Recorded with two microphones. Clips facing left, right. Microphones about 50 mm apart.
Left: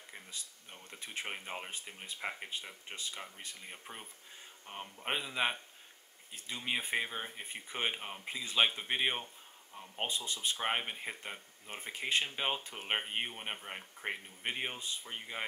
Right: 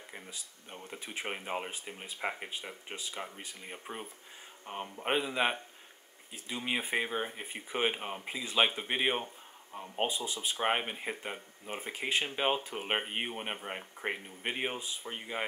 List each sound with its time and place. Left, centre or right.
0.1 s speech: centre
9.2 s a sound: right
9.9 s speech: centre